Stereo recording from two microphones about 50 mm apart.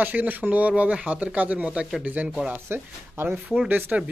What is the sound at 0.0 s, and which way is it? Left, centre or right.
Speech, right.